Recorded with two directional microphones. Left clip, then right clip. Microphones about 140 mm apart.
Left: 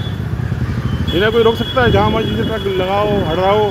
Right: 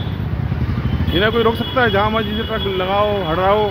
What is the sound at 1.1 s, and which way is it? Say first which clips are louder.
Speech: left 3 dB; 10° right (ahead or behind).